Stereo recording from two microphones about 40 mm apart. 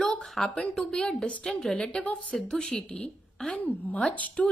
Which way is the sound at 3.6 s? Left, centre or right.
Left.